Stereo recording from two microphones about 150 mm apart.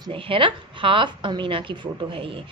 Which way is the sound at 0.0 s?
35° right (ahead or behind).